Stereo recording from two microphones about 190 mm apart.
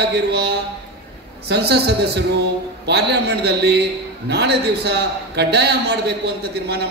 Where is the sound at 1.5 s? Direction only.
60° right (ahead or behind).